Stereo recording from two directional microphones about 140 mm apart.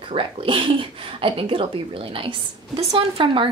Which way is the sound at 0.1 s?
40° right (ahead or behind).